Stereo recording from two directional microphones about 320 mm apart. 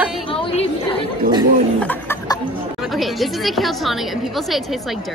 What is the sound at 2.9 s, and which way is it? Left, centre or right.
Speech, centre.